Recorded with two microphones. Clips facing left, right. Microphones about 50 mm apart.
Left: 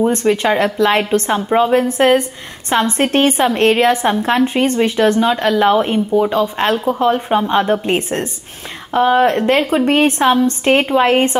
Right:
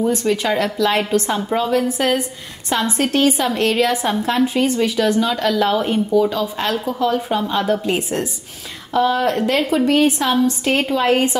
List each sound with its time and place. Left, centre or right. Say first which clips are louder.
0.0 s a woman's voice: left 4 dB; left
0.5 s a woman's voice: left 4 dB; left